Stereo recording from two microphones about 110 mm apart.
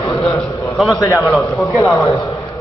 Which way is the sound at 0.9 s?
30° left (ahead or behind).